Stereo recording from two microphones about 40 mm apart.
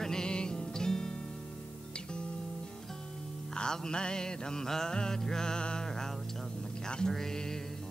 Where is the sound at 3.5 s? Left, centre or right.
Centre.